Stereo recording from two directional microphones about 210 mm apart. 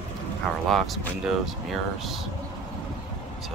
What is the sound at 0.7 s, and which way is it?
Speech, centre (ahead or behind).